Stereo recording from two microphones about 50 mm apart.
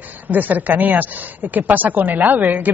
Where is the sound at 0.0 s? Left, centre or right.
Right.